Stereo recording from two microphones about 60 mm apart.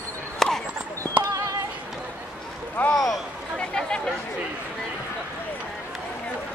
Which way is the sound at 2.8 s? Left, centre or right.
Left.